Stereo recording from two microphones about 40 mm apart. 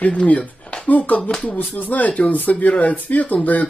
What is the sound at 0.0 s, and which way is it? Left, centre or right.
Speech, left.